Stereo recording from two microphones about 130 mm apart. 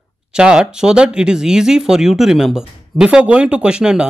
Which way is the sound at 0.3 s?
5° right (ahead or behind).